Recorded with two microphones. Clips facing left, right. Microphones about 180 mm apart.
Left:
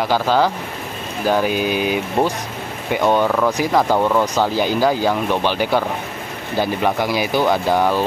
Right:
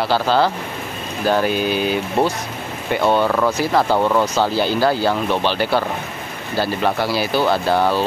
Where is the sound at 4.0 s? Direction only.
Centre (ahead or behind).